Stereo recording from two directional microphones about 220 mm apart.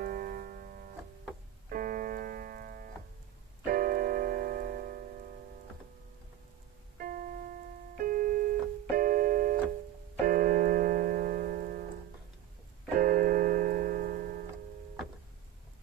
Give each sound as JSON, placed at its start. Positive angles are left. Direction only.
{"t": 0.0, "sound": "music", "side_deg": -40}
{"t": 3.6, "sound": "piano", "side_deg": -40}
{"t": 7.0, "sound": "music", "side_deg": -40}
{"t": 8.0, "sound": "keyboard", "side_deg": -40}
{"t": 10.2, "sound": "piano", "side_deg": -40}
{"t": 13.0, "sound": "keyboard", "side_deg": -40}